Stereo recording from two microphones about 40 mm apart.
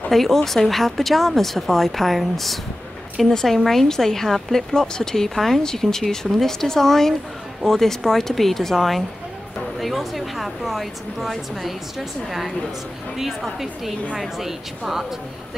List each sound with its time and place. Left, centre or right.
0.1 s speech: centre